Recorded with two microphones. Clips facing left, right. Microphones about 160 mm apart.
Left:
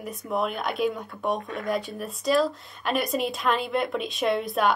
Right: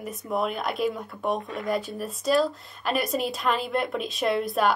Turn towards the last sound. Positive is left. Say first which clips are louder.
# even
turn(degrees=0)  # may be behind; listen again after turning